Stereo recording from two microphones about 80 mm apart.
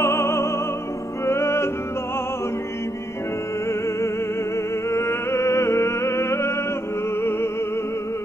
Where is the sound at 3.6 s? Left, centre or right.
Left.